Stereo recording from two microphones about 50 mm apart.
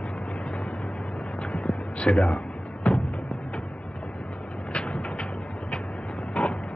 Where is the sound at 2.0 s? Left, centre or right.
Centre.